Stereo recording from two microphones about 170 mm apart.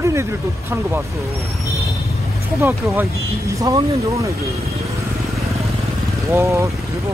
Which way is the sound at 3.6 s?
20° right (ahead or behind).